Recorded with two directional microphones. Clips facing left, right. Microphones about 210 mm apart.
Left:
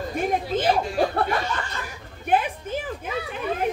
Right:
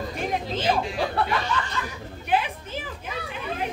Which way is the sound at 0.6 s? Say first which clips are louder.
Left 3 dB; 50° left (ahead or behind).